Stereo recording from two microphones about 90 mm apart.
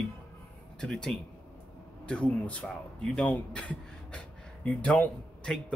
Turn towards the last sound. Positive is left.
turn(degrees=10)  # may be behind; listen again after turning